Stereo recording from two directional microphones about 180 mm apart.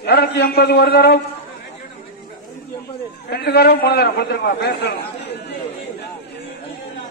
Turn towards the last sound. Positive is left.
turn(degrees=65)  # may be behind; listen again after turning